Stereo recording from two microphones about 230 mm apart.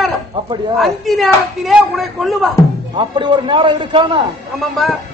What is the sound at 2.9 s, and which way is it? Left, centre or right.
A man's voice, right.